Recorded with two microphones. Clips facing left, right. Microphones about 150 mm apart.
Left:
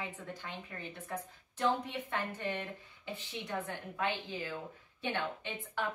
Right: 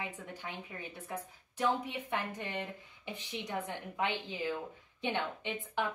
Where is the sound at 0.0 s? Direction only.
10° right (ahead or behind).